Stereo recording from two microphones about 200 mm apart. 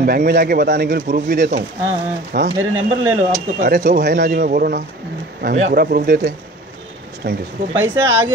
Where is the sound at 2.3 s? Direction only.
75° right (ahead or behind).